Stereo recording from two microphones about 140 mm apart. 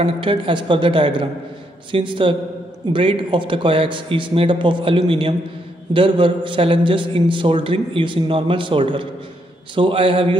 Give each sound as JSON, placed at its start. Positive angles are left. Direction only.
{"t": 0.0, "sound": "a man's voice", "side_deg": -40}